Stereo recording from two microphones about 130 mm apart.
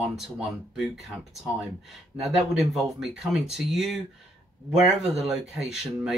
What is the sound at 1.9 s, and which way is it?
Speech, centre (ahead or behind).